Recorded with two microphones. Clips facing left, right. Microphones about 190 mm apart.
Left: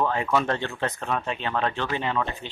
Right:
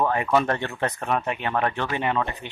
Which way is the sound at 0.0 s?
15° right (ahead or behind).